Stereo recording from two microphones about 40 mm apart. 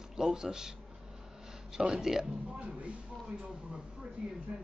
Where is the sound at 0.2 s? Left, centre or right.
Centre.